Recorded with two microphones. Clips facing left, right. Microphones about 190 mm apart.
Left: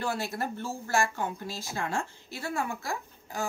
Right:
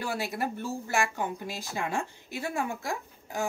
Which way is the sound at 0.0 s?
15° right (ahead or behind).